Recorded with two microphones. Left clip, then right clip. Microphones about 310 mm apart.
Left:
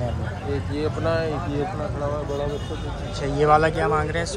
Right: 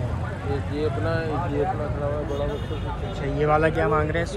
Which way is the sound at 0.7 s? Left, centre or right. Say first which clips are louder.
Left 3 dB; left.